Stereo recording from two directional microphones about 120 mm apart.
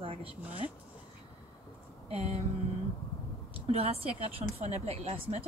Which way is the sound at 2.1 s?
60° right (ahead or behind).